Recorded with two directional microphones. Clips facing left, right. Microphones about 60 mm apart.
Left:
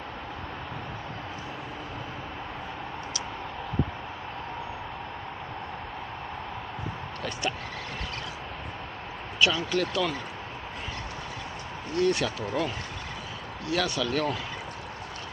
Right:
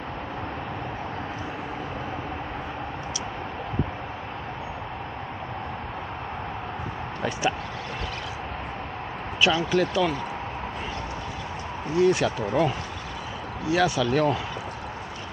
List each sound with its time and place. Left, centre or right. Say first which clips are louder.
9.4 s speech: right 3 dB; centre
11.9 s speech: right 5 dB; centre